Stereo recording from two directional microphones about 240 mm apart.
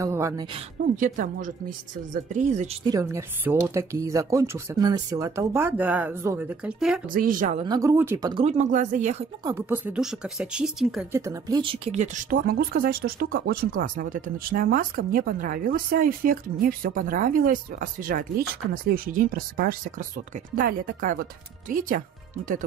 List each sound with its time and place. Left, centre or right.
0.0 s speech: centre
0.9 s a woman's voice: right
2.9 s speech: centre
7.1 s a woman's voice: right
7.6 s speech: centre
9.4 s a woman's voice: centre; by 22.6 s right